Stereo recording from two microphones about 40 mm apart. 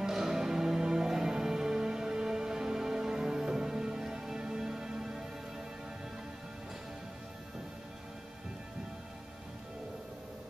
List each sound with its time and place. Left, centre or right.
0.0 s music: centre